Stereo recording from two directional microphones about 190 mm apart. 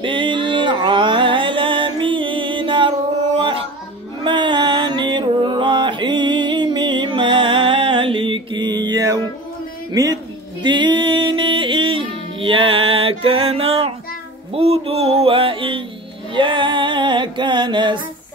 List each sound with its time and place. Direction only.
0.0 s music: 25° right (ahead or behind)
3.3 s dog: 25° right (ahead or behind)
4.2 s music: 25° right (ahead or behind)
14.5 s a sound: 30° right (ahead or behind)
16.3 s music: 25° right (ahead or behind)